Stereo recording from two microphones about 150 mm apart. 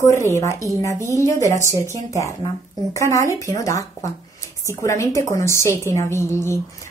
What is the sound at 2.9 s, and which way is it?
A woman's voice, 20° left (ahead or behind).